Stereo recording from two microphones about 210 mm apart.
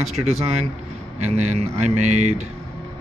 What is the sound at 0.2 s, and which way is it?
Speech, 30° right (ahead or behind).